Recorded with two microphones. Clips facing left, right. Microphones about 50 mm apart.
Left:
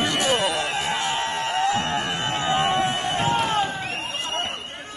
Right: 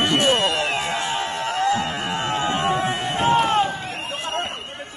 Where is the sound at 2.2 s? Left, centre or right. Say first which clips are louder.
Right 1 dB; right.